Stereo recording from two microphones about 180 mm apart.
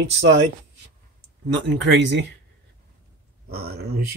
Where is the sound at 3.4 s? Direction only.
60° right (ahead or behind).